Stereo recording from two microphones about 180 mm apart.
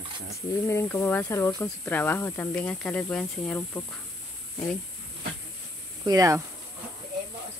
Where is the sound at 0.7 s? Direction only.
15° left (ahead or behind).